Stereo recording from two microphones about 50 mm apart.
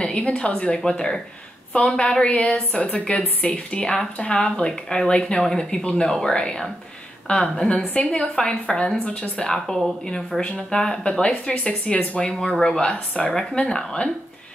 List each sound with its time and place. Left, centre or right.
0.0 s a woman's voice: left